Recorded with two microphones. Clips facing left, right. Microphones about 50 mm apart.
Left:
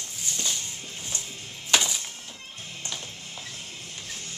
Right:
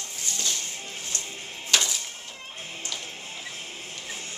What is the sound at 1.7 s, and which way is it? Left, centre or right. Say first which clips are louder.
Music: left 1 dB; centre.